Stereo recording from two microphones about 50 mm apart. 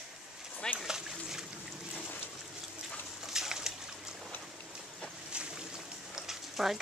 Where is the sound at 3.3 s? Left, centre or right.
Centre.